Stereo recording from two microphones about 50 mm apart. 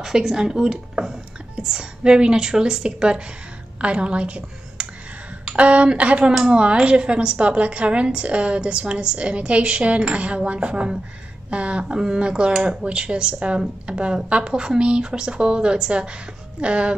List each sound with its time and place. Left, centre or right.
0.0 s a woman's voice: centre